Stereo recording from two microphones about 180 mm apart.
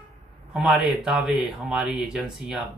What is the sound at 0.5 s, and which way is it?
Speech, centre (ahead or behind).